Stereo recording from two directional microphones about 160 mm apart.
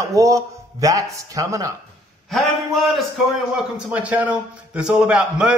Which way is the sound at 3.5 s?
10° right (ahead or behind).